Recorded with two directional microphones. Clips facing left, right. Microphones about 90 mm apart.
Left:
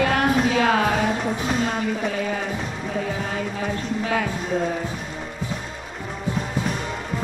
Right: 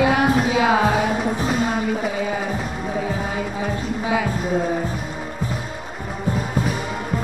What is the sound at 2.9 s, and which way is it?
Music, 10° right (ahead or behind).